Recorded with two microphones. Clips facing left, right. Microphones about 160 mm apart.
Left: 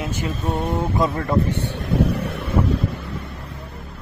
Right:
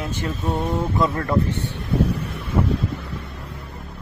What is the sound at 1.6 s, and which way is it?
Vehicle, 90° left.